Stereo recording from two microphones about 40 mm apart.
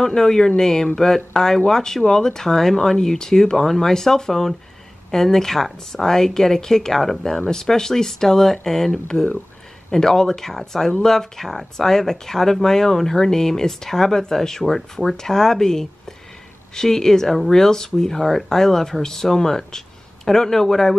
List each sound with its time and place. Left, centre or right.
0.0 s speech: centre
9.0 s speech: centre